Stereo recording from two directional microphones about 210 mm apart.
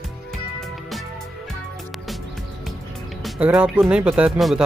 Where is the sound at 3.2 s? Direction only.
Centre (ahead or behind).